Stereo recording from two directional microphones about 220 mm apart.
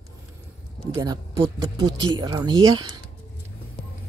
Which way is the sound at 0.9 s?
15° right (ahead or behind).